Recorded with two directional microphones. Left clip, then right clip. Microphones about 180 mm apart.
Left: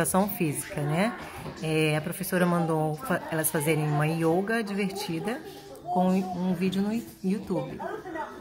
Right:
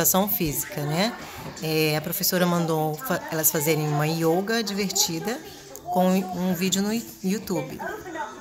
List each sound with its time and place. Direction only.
0.1 s speech: centre (ahead or behind)